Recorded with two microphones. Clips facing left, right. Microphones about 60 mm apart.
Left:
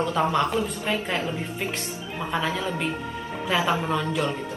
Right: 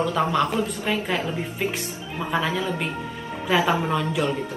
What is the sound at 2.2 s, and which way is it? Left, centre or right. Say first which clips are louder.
A woman's voice: right 2 dB; centre.